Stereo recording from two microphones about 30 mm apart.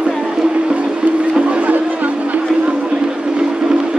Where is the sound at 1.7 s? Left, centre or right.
Right.